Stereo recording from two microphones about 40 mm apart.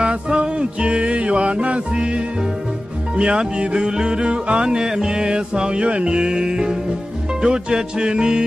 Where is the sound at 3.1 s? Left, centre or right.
Right.